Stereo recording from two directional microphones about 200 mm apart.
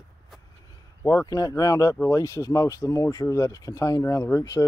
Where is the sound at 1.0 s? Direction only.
15° left (ahead or behind).